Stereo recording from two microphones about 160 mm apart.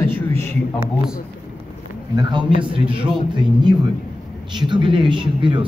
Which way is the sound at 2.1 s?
30° right (ahead or behind).